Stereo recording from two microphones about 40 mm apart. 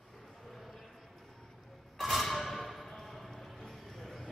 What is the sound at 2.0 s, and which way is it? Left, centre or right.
Music, centre.